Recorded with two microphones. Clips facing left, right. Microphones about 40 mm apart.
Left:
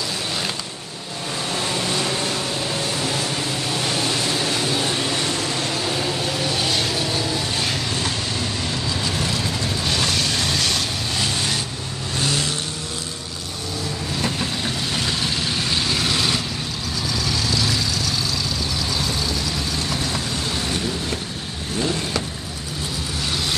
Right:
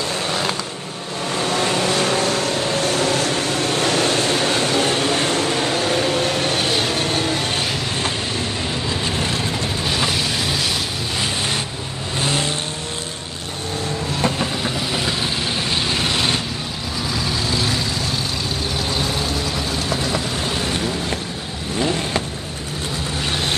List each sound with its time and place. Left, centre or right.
1.4 s vehicle: right
9.8 s vehicle: centre
12.2 s vehicle: right
15.0 s vehicle: centre
19.1 s vehicle: right
21.7 s vehicle: right